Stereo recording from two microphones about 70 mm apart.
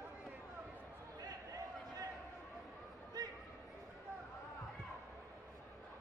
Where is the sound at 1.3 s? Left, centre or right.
Right.